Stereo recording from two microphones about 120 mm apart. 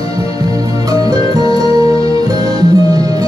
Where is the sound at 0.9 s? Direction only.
30° right (ahead or behind).